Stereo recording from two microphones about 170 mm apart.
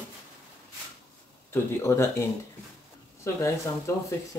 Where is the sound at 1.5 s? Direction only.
15° left (ahead or behind).